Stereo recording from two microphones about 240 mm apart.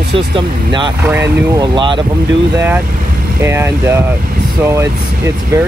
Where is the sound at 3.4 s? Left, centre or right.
Centre.